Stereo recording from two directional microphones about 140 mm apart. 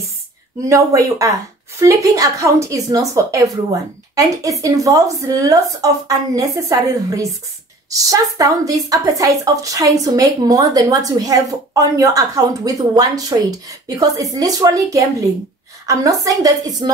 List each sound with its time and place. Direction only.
0.7 s a woman's voice: 20° right (ahead or behind)